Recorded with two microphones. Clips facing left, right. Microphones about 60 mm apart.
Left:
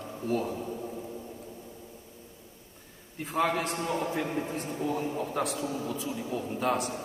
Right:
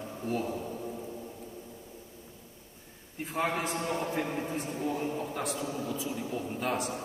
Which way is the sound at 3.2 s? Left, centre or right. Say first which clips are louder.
Left 3 dB; left.